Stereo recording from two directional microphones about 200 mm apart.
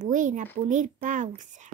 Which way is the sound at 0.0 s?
40° right (ahead or behind).